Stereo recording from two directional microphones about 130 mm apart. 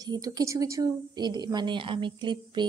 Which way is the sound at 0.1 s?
30° right (ahead or behind).